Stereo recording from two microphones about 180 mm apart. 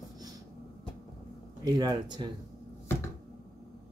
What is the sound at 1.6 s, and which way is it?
Speech, 20° right (ahead or behind).